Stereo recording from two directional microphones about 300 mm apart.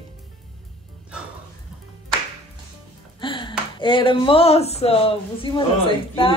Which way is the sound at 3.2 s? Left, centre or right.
Centre.